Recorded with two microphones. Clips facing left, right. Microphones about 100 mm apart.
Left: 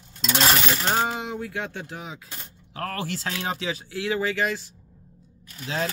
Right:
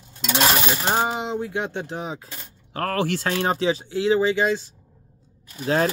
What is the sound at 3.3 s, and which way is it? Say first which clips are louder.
Speech: right 8 dB; 40° right (ahead or behind).